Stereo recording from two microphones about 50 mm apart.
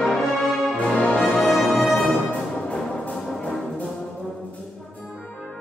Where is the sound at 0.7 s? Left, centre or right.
Left.